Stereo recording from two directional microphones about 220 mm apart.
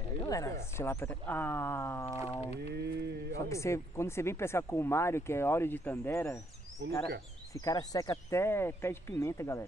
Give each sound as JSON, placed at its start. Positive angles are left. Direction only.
{"t": 0.2, "sound": "speech", "side_deg": 15}
{"t": 2.3, "sound": "whale vocalization", "side_deg": 25}
{"t": 2.7, "sound": "a sound", "side_deg": -50}
{"t": 3.3, "sound": "speech", "side_deg": 15}
{"t": 7.5, "sound": "speech", "side_deg": 15}